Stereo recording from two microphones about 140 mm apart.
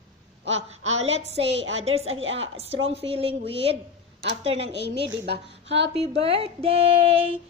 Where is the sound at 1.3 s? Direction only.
45° right (ahead or behind).